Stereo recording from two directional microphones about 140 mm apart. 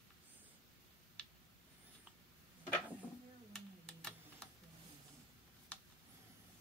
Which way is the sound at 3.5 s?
5° left (ahead or behind).